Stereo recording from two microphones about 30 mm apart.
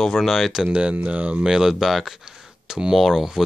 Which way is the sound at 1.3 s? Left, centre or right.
Centre.